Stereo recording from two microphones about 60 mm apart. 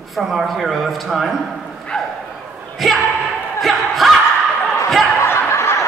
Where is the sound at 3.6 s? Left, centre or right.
Centre.